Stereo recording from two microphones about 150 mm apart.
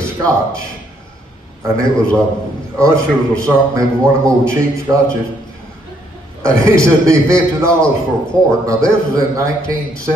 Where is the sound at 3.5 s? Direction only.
20° right (ahead or behind).